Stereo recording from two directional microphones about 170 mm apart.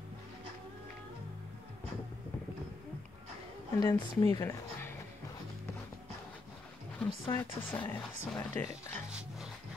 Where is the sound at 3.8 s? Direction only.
25° left (ahead or behind).